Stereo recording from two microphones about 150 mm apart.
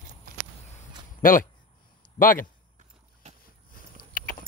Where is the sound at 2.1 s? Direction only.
65° left (ahead or behind).